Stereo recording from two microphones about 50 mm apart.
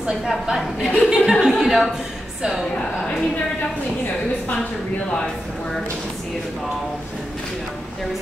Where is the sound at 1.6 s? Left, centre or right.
Centre.